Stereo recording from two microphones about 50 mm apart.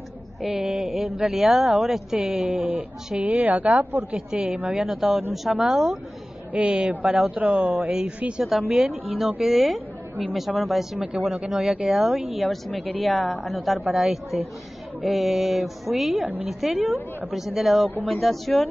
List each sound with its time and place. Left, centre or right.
0.5 s a woman's voice: centre
2.1 s a woman's voice: right
4.3 s a woman's voice: centre
5.3 s mantra: centre
5.6 s a woman's voice: centre
6.5 s a woman's voice: right
8.2 s speech: right
9.4 s a woman's voice: centre
10.6 s mantra: centre
11.4 s a woman's voice: centre
12.4 s mantra: centre
16.8 s a woman's voice: right
17.3 s mantra: centre